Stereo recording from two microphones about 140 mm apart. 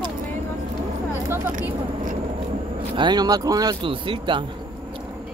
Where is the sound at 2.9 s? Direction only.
35° right (ahead or behind).